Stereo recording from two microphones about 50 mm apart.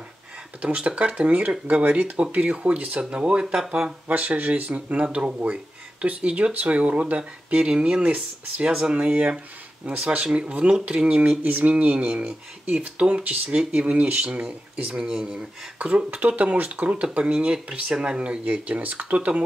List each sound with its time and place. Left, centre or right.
0.6 s speech: right
4.1 s speech: right